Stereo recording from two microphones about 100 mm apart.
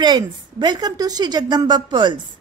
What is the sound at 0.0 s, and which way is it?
A woman's voice, 45° right (ahead or behind).